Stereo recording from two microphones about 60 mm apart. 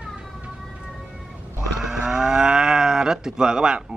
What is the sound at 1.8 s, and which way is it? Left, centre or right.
Livestock, centre.